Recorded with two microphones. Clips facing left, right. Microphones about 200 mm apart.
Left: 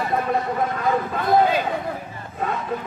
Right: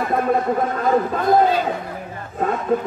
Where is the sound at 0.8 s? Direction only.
45° right (ahead or behind).